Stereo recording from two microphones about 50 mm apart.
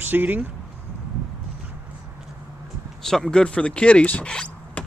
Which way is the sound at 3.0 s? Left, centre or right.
Centre.